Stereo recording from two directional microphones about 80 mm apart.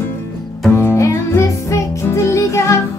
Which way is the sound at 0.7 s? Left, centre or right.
Left.